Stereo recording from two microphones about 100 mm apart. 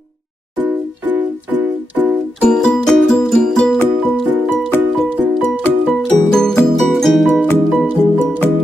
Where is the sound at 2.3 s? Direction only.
5° left (ahead or behind).